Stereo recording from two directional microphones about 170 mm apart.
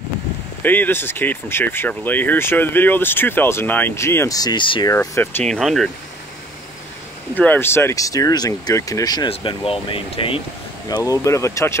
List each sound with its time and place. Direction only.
0.6 s speech: 10° left (ahead or behind); by 4.9 s 30° left (ahead or behind)
4.9 s speech: 10° left (ahead or behind)
7.3 s speech: 10° left (ahead or behind); by 10.4 s 30° left (ahead or behind)
10.9 s speech: 20° left (ahead or behind)